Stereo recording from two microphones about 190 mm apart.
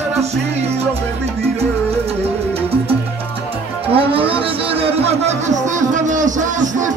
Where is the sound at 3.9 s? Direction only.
30° right (ahead or behind).